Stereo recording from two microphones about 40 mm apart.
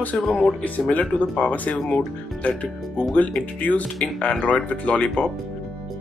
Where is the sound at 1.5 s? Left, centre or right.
Left.